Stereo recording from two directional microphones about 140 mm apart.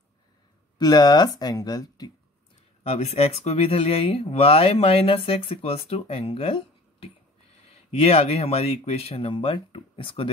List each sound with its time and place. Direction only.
0.7 s speech: 30° left (ahead or behind)
2.9 s speech: 50° left (ahead or behind)